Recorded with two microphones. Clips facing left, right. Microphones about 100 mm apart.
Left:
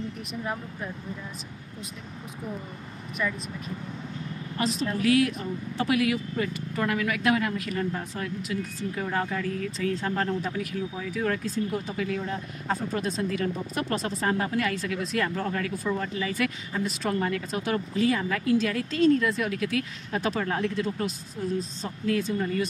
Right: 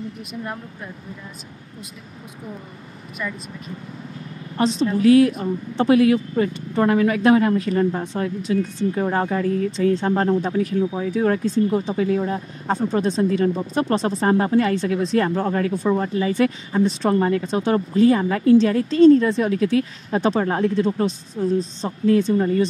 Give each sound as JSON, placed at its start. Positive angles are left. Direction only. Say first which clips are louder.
{"t": 0.2, "sound": "speech", "louder": "right 2 dB", "side_deg": 0}
{"t": 3.2, "sound": "speech", "louder": "even", "side_deg": 0}
{"t": 4.6, "sound": "a woman's voice", "louder": "right 8 dB", "side_deg": -30}